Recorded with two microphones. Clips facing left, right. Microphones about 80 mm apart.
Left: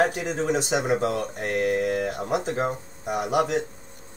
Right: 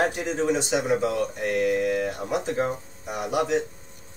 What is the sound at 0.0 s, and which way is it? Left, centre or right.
Speech, left.